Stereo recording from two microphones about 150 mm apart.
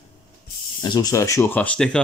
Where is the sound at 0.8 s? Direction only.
25° left (ahead or behind); by 2.0 s 5° left (ahead or behind).